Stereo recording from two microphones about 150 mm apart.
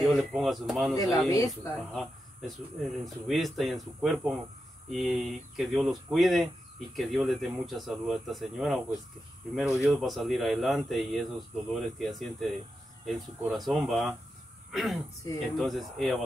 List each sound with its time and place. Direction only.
0.0 s speech: centre (ahead or behind)
1.3 s speech: 20° left (ahead or behind)
2.0 s speech: centre (ahead or behind)